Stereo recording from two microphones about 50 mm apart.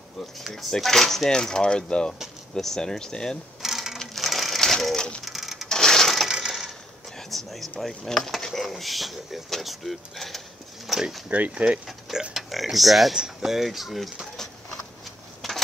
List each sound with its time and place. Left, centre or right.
0.5 s coin: centre
3.6 s sewing machine: centre
4.2 s crushing: centre
5.2 s a sound: centre
5.7 s coin: centre
6.2 s coin: centre
7.2 s a sound: centre
7.8 s speech: centre
11.2 s speech: right
12.1 s speech: centre
15.4 s a sound: centre